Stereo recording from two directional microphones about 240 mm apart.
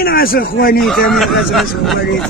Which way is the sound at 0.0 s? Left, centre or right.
Left.